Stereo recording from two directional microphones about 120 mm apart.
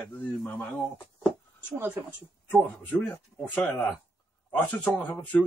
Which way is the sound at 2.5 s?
15° left (ahead or behind).